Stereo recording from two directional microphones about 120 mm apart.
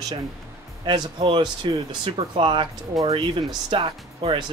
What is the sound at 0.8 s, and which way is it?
Speech, 40° right (ahead or behind).